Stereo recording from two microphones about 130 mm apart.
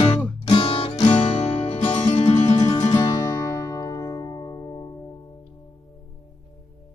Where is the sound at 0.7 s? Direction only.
50° left (ahead or behind).